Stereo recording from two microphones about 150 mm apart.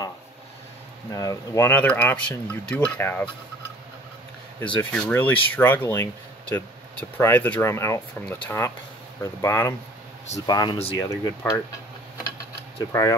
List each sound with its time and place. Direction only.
1.1 s speech: 25° left (ahead or behind)
4.7 s speech: 10° left (ahead or behind)
10.4 s speech: 30° left (ahead or behind)
11.0 s speech: 20° left (ahead or behind)
12.8 s speech: 25° left (ahead or behind)